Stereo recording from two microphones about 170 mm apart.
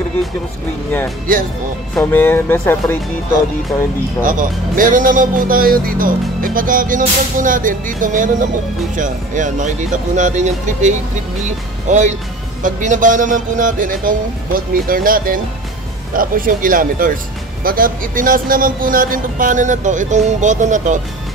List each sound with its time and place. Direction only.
2.0 s speech: 10° left (ahead or behind)
4.2 s speech: 55° right (ahead or behind)